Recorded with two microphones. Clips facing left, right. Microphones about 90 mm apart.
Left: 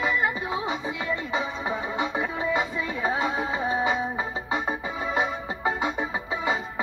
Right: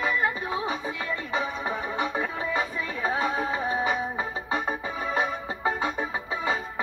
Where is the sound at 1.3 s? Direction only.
25° left (ahead or behind).